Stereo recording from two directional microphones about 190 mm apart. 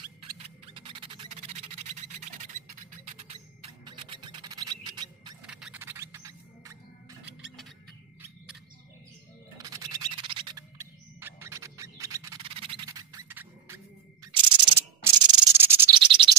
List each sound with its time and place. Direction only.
0.7 s music: 25° right (ahead or behind)
3.8 s music: 25° right (ahead or behind)
5.4 s music: 5° right (ahead or behind)
9.6 s music: 20° right (ahead or behind)
10.8 s music: 10° right (ahead or behind)
14.2 s a sound: 15° right (ahead or behind)
15.9 s a sound: 25° right (ahead or behind)